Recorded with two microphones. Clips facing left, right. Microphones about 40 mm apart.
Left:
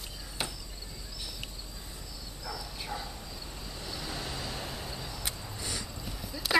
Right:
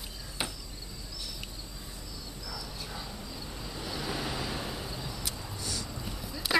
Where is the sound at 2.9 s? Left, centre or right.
Centre.